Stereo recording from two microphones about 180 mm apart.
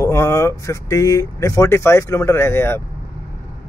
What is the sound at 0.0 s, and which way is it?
Speech, 15° left (ahead or behind).